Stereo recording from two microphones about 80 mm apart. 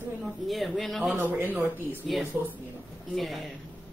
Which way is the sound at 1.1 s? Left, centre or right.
Right.